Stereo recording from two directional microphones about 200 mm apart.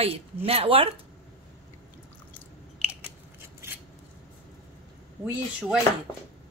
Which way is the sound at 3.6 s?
15° right (ahead or behind).